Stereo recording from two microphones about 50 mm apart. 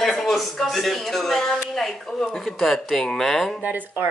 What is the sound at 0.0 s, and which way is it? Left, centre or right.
Speech, centre.